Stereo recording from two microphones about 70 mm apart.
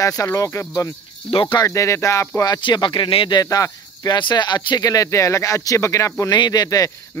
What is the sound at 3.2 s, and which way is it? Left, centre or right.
Speech, left.